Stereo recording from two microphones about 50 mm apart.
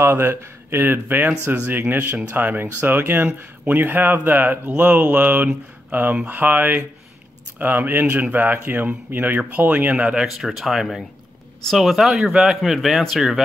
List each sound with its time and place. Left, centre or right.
0.0 s speech: right
9.9 s speech: centre
10.2 s speech: centre
12.3 s speech: centre
12.6 s speech: centre